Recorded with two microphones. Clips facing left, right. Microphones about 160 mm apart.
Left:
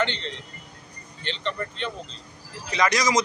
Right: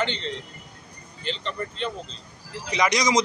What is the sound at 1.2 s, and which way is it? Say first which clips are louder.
Speech: even; centre (ahead or behind).